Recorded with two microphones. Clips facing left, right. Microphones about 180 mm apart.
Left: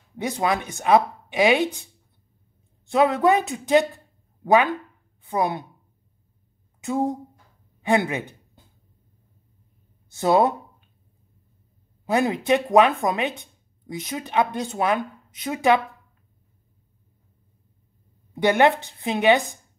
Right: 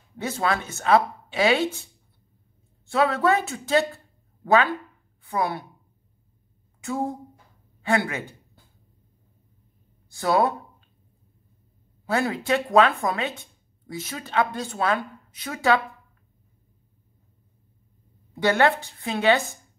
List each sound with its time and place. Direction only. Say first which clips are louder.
0.2 s speech: left 2 dB; 15° left (ahead or behind)
2.9 s a woman's voice: left 3 dB; 20° left (ahead or behind)
6.8 s speech: left 4 dB; 20° left (ahead or behind)
7.8 s a sound: left 3 dB; 20° left (ahead or behind)
10.1 s a sound: left 3 dB; 20° left (ahead or behind)
12.1 s speech: left 3 dB; 20° left (ahead or behind)
18.3 s speech: left 2 dB; 20° left (ahead or behind)